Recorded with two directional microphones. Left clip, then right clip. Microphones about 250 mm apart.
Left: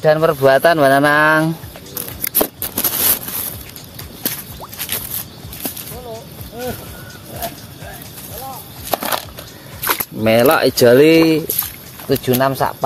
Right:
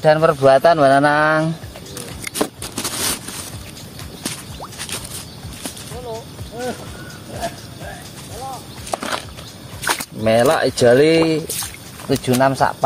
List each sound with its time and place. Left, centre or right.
0.0 s speech: left
2.0 s a sound: left
4.2 s rodents: left
8.9 s a sound: left
10.2 s speech: left
12.1 s speech: left